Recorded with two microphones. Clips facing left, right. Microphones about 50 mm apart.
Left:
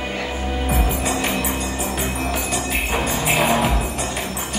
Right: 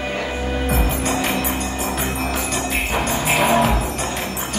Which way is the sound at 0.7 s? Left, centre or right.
Centre.